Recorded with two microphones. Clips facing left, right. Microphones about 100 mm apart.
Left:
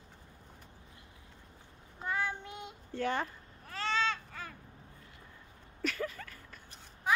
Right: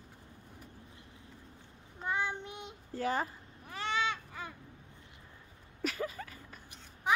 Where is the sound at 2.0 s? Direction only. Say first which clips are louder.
Right 1 dB; 20° right (ahead or behind).